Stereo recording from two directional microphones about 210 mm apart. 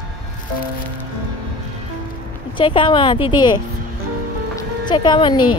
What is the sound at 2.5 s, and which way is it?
A woman's voice, 25° left (ahead or behind).